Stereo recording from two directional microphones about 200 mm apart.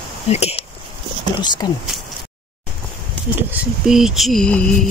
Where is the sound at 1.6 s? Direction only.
20° left (ahead or behind).